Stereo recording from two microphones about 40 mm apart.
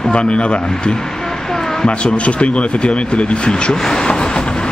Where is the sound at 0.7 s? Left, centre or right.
Centre.